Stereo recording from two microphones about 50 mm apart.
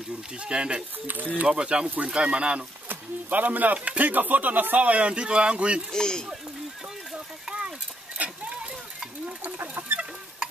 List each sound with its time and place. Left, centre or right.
0.4 s speech: right
1.0 s speech: right
1.5 s speech: centre
2.9 s speech: right
5.9 s speech: centre
8.2 s a sound: right
9.6 s chicken: right